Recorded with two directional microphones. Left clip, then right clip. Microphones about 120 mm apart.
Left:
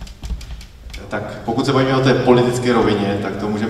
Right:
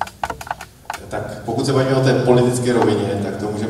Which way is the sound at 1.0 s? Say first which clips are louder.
Left 4 dB; 20° left (ahead or behind).